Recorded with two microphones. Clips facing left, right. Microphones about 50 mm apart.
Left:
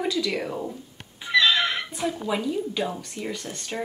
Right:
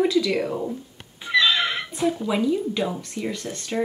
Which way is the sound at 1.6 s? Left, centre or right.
Centre.